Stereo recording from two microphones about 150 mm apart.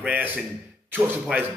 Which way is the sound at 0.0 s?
10° right (ahead or behind).